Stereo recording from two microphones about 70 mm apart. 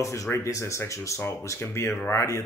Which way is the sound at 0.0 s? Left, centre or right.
Left.